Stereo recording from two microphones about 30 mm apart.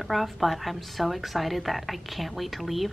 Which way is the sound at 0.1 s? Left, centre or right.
Centre.